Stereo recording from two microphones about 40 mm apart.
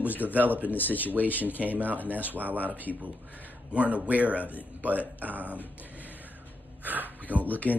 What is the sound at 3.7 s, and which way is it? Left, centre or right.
Speech, right.